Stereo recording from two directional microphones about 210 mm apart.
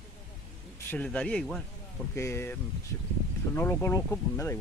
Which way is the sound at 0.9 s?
5° left (ahead or behind).